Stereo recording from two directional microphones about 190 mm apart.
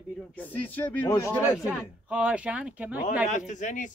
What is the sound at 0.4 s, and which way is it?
A man's voice, 10° left (ahead or behind).